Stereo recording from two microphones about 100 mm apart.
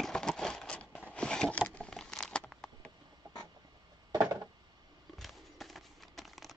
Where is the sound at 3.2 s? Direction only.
45° right (ahead or behind).